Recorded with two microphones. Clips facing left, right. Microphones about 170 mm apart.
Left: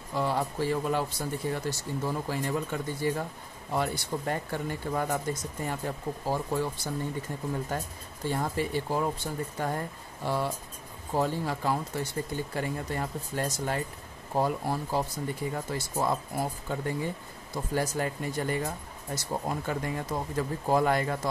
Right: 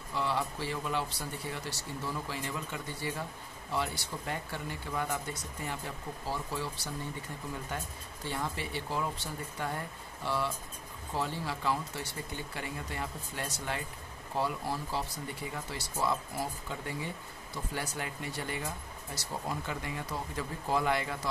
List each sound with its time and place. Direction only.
0.1 s speech: 45° left (ahead or behind)
8.3 s speech: 45° left (ahead or behind)